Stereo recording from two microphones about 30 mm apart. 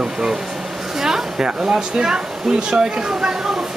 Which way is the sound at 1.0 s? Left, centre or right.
Centre.